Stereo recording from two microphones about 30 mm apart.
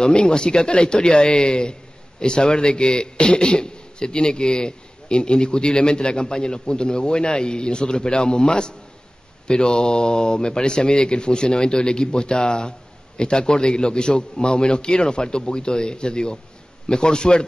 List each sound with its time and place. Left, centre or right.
0.0 s speech: left